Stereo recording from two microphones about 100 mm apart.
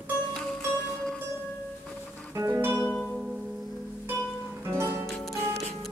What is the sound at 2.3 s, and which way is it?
Music, 25° right (ahead or behind).